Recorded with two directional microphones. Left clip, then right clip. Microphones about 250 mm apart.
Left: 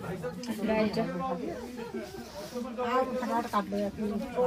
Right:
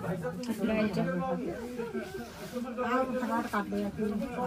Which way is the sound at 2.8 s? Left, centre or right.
Left.